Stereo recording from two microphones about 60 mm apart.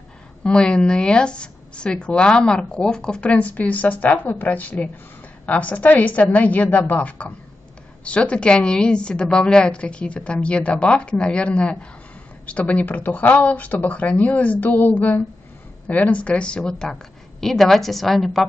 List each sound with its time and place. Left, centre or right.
0.4 s a woman's voice: centre